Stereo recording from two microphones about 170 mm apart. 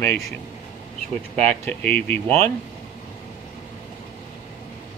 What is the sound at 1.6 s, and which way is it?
Speech, 10° left (ahead or behind).